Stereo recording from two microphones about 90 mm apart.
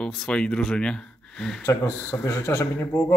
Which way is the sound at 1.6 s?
30° left (ahead or behind).